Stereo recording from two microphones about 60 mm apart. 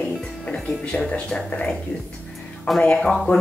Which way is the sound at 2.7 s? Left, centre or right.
Centre.